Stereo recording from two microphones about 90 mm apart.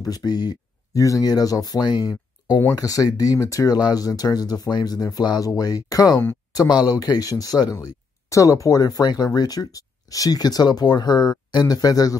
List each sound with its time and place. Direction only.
0.0 s speech: 45° left (ahead or behind)